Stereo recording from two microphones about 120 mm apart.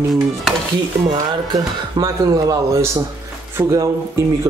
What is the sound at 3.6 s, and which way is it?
Speech, 15° right (ahead or behind).